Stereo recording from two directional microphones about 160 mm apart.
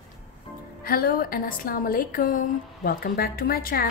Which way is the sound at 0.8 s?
65° left (ahead or behind).